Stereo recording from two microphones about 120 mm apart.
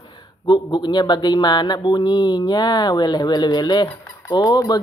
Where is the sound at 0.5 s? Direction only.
40° left (ahead or behind).